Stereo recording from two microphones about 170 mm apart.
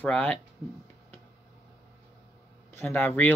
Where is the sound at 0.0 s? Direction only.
10° left (ahead or behind).